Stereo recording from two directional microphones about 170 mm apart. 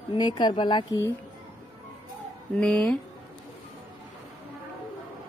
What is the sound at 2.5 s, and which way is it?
Speech, 5° left (ahead or behind).